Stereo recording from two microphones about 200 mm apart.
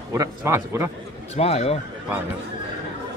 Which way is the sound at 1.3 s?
30° left (ahead or behind).